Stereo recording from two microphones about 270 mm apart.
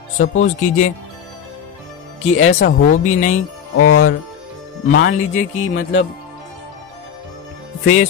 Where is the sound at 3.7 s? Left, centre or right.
Left.